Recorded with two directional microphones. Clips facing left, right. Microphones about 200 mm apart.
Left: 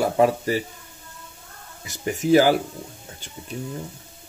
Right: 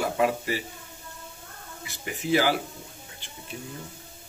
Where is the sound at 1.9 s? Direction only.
45° left (ahead or behind).